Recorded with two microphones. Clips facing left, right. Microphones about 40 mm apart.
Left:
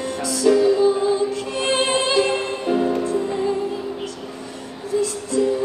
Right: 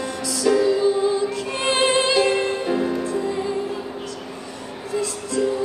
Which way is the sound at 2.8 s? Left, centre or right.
Centre.